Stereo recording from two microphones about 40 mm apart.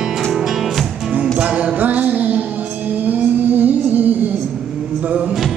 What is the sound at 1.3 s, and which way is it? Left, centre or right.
Music, right.